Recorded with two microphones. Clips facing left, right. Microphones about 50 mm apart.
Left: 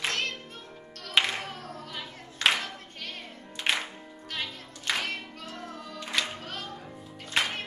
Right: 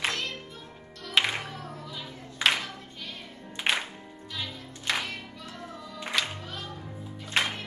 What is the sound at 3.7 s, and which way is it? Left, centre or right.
Music, centre.